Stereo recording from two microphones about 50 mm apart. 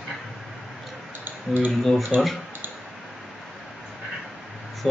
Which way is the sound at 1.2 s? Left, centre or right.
Right.